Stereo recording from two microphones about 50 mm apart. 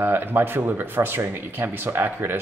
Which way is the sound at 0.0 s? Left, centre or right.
Right.